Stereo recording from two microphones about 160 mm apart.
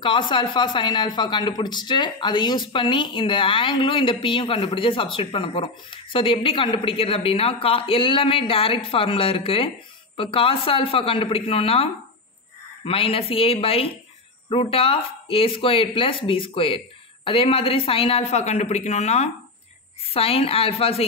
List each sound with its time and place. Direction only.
0.0 s speech: 30° left (ahead or behind)